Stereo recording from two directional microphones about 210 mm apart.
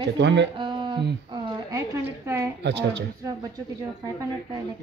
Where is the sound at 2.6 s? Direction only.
55° right (ahead or behind).